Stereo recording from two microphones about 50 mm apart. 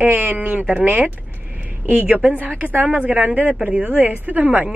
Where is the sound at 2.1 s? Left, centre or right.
Right.